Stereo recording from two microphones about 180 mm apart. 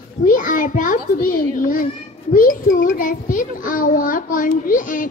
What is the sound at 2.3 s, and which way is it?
A child's voice, 50° left (ahead or behind).